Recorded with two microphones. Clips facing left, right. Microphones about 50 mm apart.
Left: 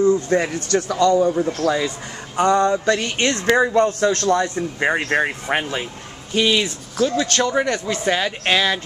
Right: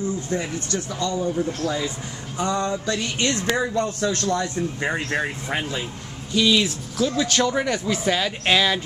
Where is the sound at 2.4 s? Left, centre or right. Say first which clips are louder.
Left 8 dB; left.